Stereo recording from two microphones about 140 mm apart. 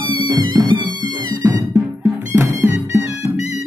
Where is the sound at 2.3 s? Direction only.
20° right (ahead or behind).